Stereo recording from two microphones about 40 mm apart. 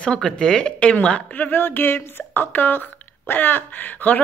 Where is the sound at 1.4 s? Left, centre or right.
Left.